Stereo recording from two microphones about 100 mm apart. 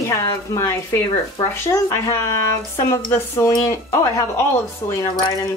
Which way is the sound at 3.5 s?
30° left (ahead or behind).